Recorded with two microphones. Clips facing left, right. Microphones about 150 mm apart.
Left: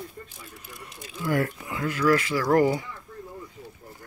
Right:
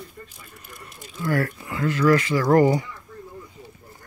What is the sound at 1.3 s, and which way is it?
Speech, 15° left (ahead or behind).